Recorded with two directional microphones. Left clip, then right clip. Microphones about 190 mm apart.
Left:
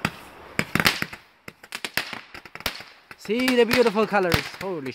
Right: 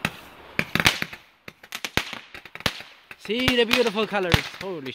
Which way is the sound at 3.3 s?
10° left (ahead or behind).